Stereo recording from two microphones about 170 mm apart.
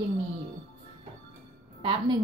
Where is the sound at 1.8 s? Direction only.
30° right (ahead or behind).